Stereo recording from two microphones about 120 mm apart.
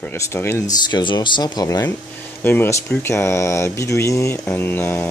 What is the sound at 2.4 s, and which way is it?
Speech, 15° left (ahead or behind).